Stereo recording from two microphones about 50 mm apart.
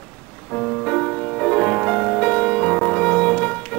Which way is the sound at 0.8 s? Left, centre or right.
Left.